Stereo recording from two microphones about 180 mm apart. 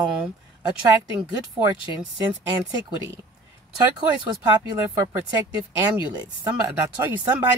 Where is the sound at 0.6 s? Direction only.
20° right (ahead or behind).